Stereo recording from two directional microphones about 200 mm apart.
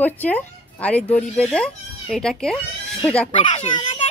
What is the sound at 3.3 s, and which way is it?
Speech, 25° left (ahead or behind).